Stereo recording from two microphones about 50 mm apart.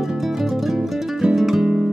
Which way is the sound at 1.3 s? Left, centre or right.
Centre.